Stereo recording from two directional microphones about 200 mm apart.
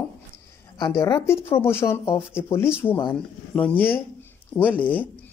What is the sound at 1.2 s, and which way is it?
Speech, 10° left (ahead or behind).